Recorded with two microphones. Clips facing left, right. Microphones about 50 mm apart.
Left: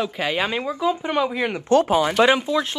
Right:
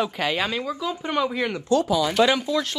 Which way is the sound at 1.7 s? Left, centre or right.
Left.